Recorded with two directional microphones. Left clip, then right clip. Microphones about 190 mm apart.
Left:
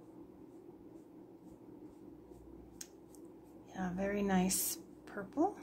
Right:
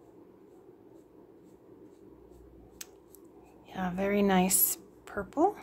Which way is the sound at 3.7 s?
20° right (ahead or behind).